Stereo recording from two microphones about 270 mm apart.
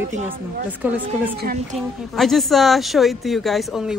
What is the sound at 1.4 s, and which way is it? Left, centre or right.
Speech, right.